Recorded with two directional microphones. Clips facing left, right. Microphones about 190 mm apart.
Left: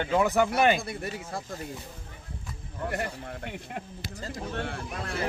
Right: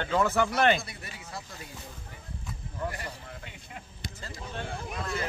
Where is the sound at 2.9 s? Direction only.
60° left (ahead or behind).